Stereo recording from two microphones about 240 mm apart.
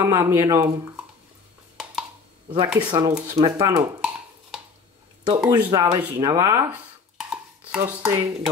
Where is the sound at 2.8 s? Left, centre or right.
Centre.